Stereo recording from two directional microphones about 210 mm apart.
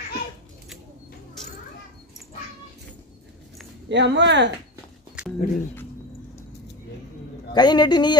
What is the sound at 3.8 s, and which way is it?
Speech, 55° right (ahead or behind).